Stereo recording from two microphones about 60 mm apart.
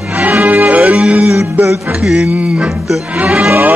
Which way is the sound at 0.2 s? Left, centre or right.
Right.